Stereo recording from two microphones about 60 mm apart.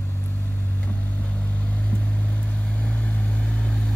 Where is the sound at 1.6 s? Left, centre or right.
Left.